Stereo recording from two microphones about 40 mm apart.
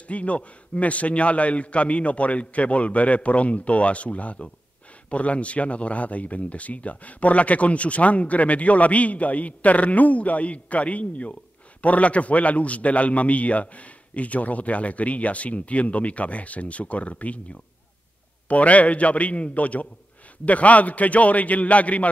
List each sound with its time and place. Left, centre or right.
0.1 s speech: left